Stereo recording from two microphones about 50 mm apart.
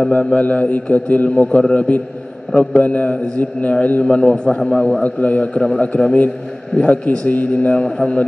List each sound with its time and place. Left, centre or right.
0.1 s a man's voice: left; by 5.0 s centre
5.0 s a man's voice: left
7.8 s a man's voice: centre